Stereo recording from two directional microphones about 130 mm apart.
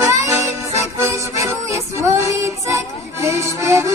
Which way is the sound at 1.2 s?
20° right (ahead or behind).